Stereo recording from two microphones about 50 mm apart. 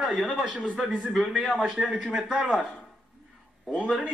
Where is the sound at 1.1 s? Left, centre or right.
Centre.